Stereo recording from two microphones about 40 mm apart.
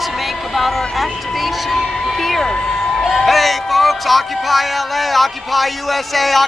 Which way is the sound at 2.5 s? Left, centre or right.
Centre.